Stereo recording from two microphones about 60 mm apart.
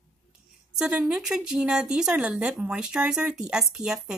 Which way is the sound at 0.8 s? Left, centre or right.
Centre.